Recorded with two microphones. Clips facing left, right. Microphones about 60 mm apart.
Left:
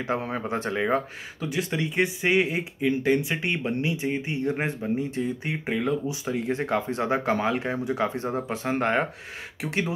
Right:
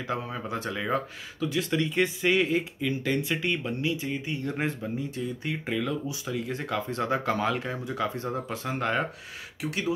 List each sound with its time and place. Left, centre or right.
0.2 s speech: left